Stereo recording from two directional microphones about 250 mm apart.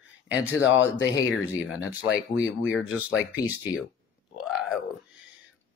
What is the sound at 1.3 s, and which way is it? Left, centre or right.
Speech, centre.